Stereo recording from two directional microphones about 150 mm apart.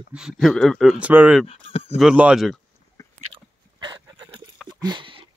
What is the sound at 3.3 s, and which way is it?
Dog, 30° right (ahead or behind).